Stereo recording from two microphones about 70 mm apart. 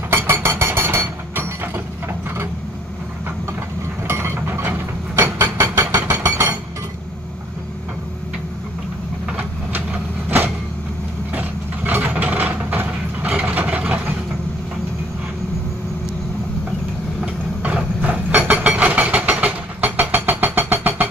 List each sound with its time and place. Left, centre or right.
0.1 s a sound: right
4.1 s a sound: right
9.4 s train: right
11.3 s mechanisms: right
13.3 s vehicle: right
17.2 s vehicle: right